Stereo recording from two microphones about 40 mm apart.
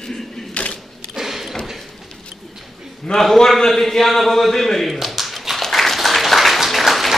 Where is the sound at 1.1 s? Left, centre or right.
Centre.